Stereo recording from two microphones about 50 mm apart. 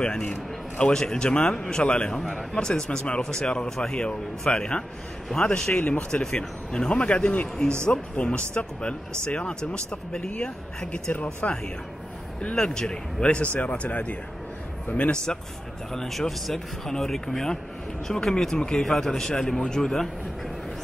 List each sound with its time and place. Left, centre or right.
0.0 s speech: centre
2.1 s speech: centre; by 14.1 s left
15.3 s speech: centre